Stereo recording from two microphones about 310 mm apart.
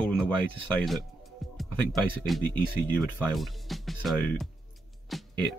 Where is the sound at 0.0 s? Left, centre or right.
Centre.